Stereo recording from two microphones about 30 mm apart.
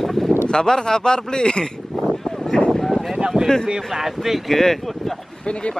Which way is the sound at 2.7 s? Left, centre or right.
Centre.